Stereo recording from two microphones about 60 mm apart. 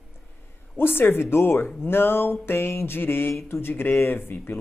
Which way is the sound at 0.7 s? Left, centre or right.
Left.